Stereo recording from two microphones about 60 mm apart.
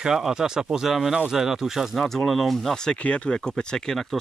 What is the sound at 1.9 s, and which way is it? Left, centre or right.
Speech, centre.